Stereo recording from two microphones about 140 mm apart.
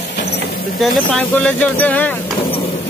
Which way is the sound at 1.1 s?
10° left (ahead or behind).